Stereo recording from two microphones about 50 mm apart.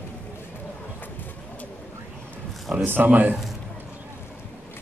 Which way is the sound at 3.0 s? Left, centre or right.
Right.